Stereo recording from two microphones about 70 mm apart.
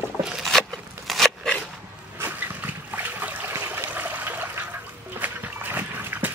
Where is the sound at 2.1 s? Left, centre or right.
Right.